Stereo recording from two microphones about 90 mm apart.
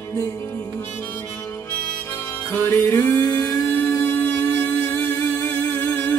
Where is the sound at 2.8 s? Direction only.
35° left (ahead or behind).